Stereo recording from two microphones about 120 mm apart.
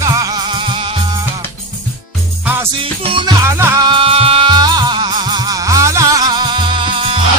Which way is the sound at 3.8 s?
45° right (ahead or behind).